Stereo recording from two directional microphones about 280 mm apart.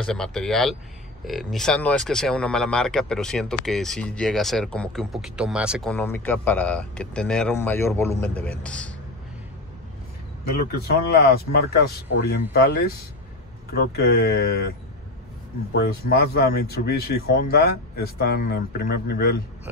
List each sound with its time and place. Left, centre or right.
0.0 s speech: centre
10.7 s speech: left
15.7 s speech: left